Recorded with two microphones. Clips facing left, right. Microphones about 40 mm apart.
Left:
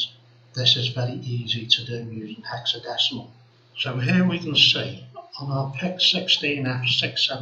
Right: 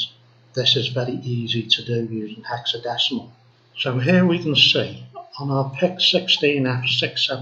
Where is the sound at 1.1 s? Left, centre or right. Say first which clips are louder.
Right 4 dB; centre.